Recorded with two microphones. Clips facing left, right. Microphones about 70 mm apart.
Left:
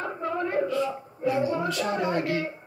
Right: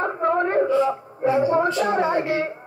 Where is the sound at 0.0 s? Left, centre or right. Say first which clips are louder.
Right 8 dB; right.